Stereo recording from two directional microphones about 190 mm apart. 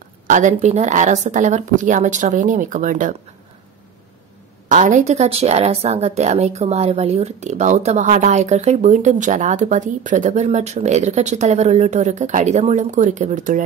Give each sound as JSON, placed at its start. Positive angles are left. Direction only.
{"t": 0.3, "sound": "a woman's voice", "side_deg": -40}
{"t": 4.6, "sound": "a woman's voice", "side_deg": -40}